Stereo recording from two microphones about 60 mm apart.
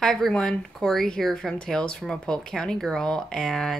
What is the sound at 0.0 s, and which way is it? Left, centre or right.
Speech, centre.